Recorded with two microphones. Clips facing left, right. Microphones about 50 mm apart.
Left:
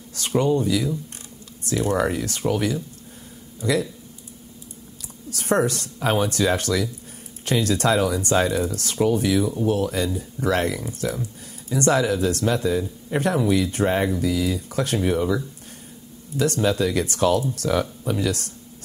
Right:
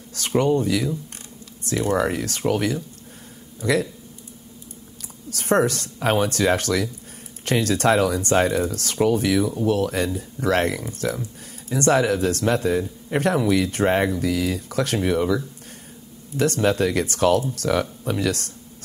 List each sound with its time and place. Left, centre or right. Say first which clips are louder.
0.4 s speech: right 1 dB; right
5.3 s speech: right 1 dB; right